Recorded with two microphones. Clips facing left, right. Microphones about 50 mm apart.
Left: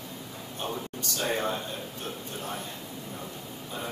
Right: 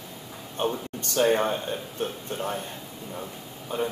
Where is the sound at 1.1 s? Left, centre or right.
Right.